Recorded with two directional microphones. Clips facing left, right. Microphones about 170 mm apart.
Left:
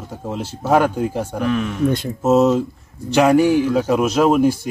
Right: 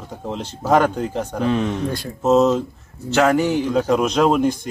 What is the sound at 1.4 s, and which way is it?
Speech, 25° right (ahead or behind).